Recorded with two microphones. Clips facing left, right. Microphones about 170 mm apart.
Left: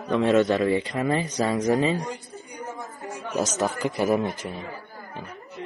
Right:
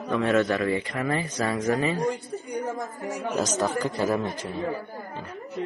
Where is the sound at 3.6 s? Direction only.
20° left (ahead or behind).